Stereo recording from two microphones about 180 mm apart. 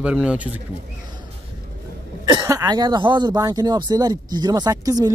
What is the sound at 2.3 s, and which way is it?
A man's voice, 20° right (ahead or behind).